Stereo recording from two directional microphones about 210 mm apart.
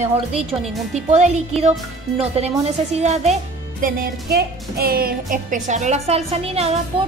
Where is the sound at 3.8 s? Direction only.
45° right (ahead or behind).